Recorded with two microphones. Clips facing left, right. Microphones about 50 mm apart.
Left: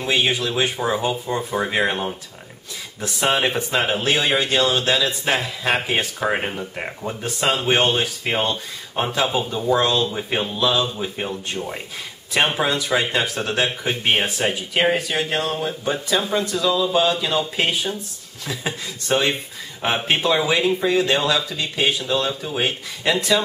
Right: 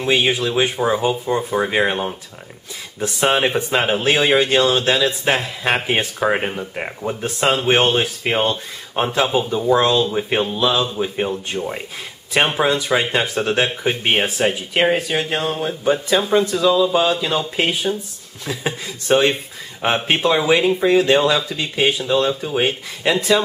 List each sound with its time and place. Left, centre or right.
0.0 s speech: centre
3.2 s speech: centre
7.2 s speech: right
19.0 s speech: centre